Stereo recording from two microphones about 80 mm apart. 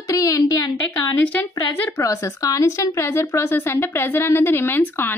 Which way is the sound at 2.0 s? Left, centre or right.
Left.